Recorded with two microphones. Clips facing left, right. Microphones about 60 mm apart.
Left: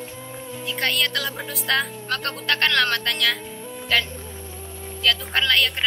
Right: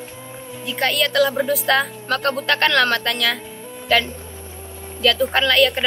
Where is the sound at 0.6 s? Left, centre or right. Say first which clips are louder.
Right 4 dB; centre.